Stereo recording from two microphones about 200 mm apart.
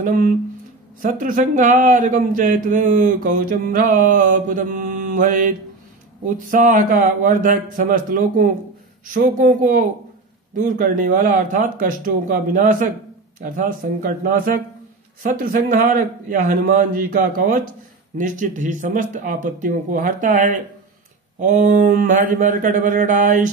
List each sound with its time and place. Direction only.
1.0 s a man's voice: 45° right (ahead or behind)